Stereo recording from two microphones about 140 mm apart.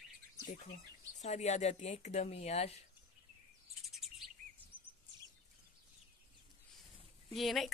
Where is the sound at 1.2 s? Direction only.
55° left (ahead or behind).